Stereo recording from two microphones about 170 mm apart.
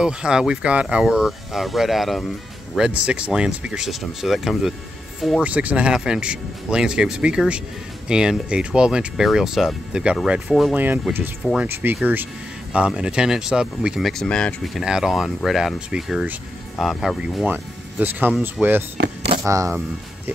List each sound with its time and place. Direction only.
0.0 s speech: 5° right (ahead or behind)
17.5 s speech: 10° right (ahead or behind)